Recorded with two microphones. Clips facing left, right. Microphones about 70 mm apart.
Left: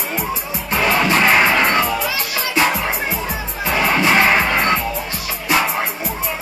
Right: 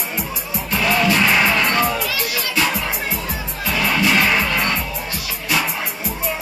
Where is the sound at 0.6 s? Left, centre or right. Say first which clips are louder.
Left 1 dB; left.